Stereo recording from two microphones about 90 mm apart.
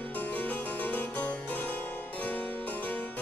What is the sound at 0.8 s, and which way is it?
Harpsichord, 15° left (ahead or behind).